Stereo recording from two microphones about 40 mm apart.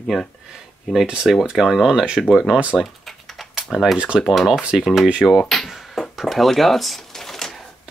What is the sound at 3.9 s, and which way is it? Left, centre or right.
Speech, right.